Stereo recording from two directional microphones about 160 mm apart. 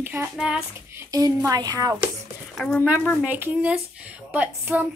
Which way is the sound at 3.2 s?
10° right (ahead or behind).